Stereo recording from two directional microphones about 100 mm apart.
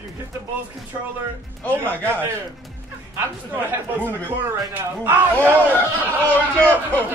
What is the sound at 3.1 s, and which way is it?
A man's voice, 20° right (ahead or behind).